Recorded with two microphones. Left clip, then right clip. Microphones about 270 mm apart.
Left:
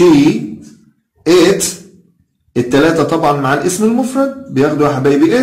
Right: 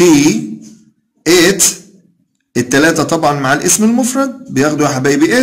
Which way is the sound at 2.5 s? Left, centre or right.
Right.